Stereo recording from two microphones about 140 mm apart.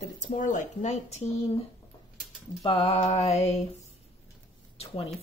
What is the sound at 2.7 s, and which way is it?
Speech, 40° left (ahead or behind).